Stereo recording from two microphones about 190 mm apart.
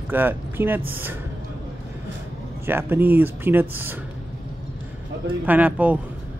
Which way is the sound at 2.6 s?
10° right (ahead or behind).